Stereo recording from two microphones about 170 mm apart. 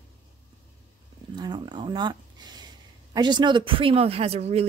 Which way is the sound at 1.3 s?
25° right (ahead or behind).